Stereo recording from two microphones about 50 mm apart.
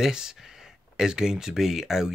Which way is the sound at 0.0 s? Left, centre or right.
Centre.